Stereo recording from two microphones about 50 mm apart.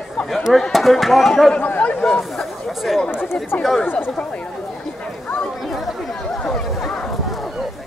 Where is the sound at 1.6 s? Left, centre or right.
Left.